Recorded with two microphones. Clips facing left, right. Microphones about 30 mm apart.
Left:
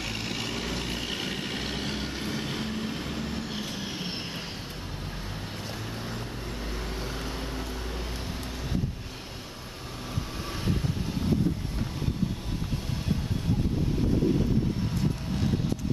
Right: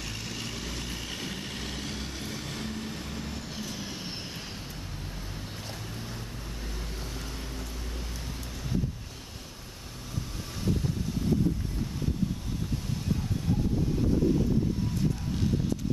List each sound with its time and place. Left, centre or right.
0.0 s vehicle: left
0.5 s vehicle: left
5.9 s vehicle: left